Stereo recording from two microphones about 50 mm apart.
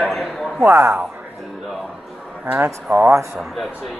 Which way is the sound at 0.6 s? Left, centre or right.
Right.